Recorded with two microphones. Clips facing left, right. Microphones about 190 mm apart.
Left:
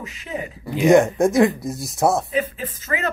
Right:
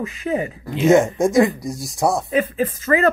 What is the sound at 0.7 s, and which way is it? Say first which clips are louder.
Speech: even; centre (ahead or behind).